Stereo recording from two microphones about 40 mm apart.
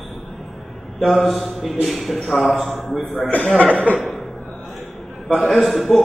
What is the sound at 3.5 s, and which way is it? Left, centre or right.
Chuckle, left.